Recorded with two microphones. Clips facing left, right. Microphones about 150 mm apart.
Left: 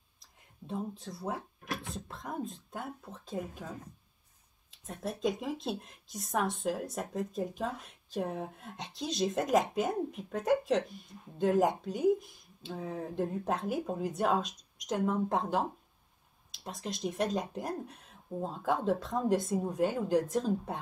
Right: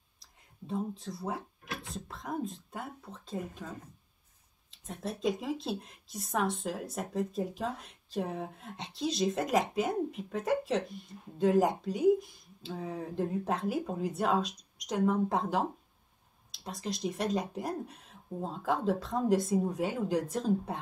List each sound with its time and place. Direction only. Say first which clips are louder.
0.7 s speech: right 2 dB; centre (ahead or behind)
4.8 s speech: even; centre (ahead or behind)